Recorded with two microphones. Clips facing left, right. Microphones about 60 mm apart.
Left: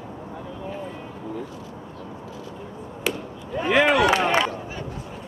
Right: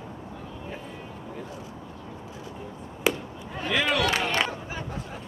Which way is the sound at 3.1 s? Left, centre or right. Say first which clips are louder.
Right 2 dB; centre.